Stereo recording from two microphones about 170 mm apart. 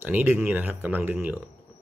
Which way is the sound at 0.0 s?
10° right (ahead or behind).